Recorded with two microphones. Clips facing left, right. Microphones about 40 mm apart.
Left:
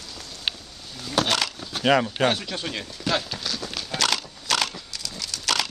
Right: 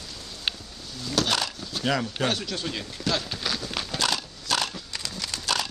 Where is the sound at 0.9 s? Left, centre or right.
Left.